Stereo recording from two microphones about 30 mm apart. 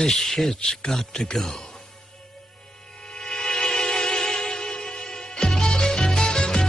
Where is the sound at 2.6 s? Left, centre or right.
Left.